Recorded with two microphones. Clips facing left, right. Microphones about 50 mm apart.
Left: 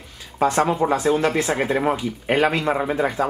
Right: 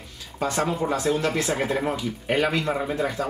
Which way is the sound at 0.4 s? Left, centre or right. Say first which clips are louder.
Left 6 dB; centre.